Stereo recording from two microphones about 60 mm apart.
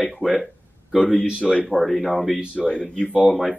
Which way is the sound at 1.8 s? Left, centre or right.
Centre.